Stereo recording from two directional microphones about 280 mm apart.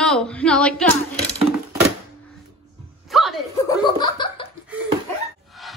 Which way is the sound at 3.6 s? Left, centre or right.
Centre.